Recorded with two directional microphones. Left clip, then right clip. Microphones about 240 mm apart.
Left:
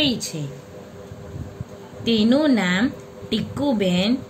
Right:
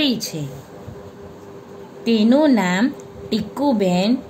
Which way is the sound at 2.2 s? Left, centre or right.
Centre.